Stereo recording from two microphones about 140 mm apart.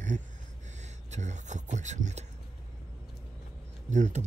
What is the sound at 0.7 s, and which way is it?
Speech, 55° right (ahead or behind).